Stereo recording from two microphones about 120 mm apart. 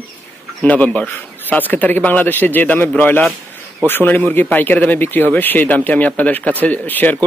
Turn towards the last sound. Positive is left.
turn(degrees=15)  # may be behind; listen again after turning